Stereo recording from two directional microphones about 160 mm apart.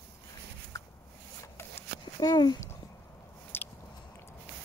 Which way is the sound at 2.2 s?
25° left (ahead or behind).